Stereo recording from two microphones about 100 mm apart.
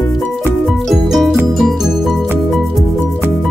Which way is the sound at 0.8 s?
Centre (ahead or behind).